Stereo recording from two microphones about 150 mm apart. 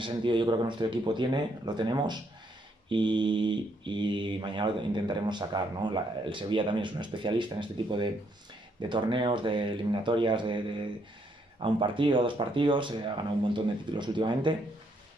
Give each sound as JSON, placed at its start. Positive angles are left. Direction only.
{"t": 0.0, "sound": "speech", "side_deg": -30}
{"t": 11.6, "sound": "speech", "side_deg": -35}